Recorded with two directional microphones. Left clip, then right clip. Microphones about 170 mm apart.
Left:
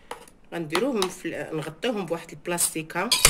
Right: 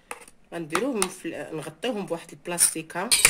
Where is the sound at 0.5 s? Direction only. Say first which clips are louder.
Left 2 dB; 40° right (ahead or behind).